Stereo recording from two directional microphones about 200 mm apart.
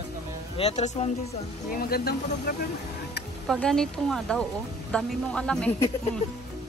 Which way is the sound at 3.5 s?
5° left (ahead or behind).